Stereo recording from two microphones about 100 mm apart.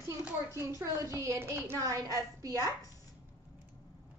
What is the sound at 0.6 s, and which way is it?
A woman's voice, 25° right (ahead or behind).